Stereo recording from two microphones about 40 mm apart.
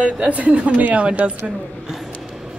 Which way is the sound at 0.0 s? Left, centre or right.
Right.